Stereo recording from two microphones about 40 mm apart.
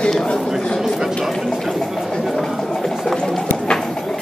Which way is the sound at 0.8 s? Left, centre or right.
Centre.